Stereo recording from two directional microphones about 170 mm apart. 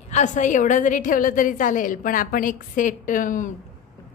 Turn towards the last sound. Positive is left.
turn(degrees=50)  # may be behind; listen again after turning